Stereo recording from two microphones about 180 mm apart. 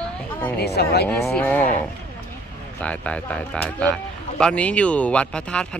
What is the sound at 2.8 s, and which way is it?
Speech, 5° left (ahead or behind).